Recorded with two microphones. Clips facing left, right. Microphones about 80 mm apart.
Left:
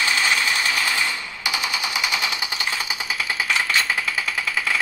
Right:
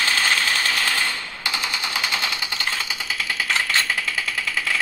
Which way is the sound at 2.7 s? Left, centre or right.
Centre.